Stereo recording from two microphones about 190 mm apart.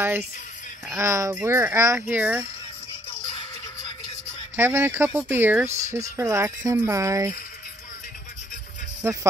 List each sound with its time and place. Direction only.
0.0 s speech: 10° right (ahead or behind)
4.6 s speech: 15° right (ahead or behind)
9.0 s speech: 15° right (ahead or behind)